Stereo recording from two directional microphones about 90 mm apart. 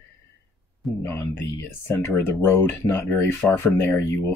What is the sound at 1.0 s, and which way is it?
Speech, 25° left (ahead or behind).